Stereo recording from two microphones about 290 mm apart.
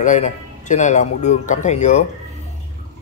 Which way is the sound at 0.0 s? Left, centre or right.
Left.